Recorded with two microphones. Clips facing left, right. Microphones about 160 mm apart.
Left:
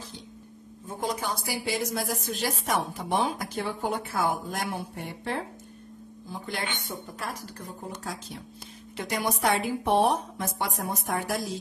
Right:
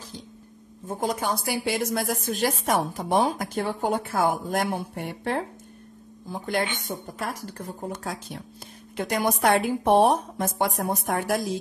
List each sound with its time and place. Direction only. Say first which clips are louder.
0.8 s a woman's voice: right 4 dB; 45° right (ahead or behind)
6.9 s a woman's voice: right 4 dB; 45° right (ahead or behind)